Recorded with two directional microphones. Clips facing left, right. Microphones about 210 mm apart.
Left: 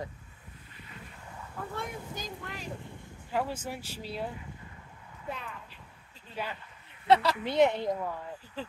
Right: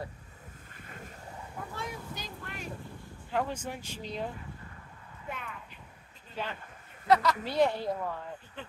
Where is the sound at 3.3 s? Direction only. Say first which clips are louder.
Even; 5° left (ahead or behind).